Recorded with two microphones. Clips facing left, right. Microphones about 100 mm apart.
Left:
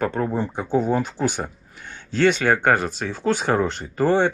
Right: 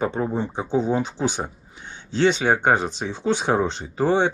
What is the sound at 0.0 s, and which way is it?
A man's voice, 15° right (ahead or behind).